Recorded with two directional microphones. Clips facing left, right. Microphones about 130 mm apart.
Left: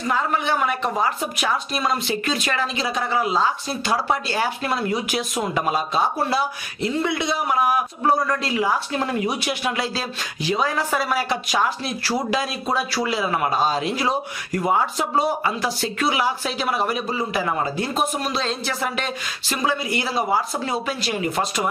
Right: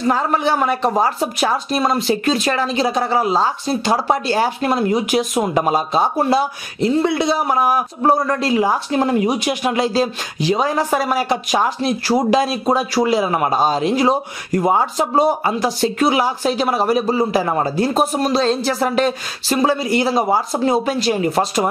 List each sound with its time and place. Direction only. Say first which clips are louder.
0.0 s speech: right 5 dB; 35° right (ahead or behind)
4.7 s speech: right 7 dB; 25° right (ahead or behind)